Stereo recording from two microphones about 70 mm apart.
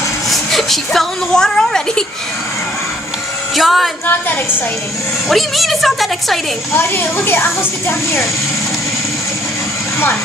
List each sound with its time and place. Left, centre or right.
0.3 s a woman's voice: centre
3.5 s a woman's voice: centre
4.0 s a woman's voice: left
5.3 s a woman's voice: centre
6.7 s speech: left